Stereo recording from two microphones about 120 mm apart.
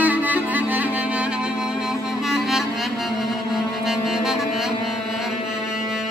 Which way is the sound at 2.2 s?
5° right (ahead or behind).